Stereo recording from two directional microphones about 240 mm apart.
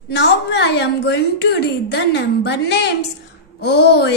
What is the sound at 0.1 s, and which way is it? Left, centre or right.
Speech, left.